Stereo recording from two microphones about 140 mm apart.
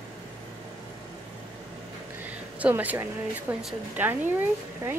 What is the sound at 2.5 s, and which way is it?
A woman's voice, 10° right (ahead or behind).